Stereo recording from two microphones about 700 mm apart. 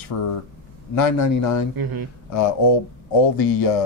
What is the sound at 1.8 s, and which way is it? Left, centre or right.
Speech, right.